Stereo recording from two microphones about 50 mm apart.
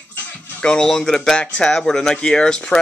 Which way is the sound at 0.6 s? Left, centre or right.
Centre.